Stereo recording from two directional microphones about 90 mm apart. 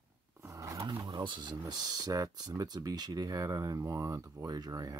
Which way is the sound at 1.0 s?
60° right (ahead or behind).